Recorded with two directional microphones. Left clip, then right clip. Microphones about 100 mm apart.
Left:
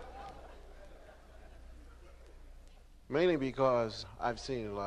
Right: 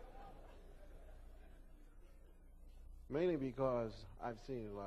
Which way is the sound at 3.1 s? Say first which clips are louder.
Left 8 dB; 45° right (ahead or behind).